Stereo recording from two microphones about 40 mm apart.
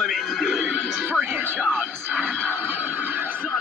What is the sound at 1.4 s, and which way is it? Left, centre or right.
Speech, right.